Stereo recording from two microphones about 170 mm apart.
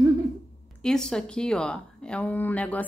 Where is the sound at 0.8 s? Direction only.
5° left (ahead or behind).